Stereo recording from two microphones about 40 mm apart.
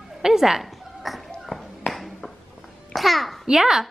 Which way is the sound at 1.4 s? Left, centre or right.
Centre.